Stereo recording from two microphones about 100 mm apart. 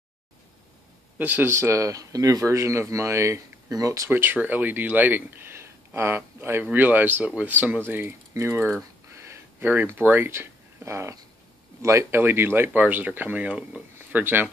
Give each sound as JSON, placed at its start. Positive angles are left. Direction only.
{"t": 1.1, "sound": "speech", "side_deg": -15}
{"t": 1.5, "sound": "speech", "side_deg": -30}
{"t": 4.1, "sound": "speech", "side_deg": -20}
{"t": 9.1, "sound": "a sound", "side_deg": -30}
{"t": 11.8, "sound": "speech", "side_deg": -30}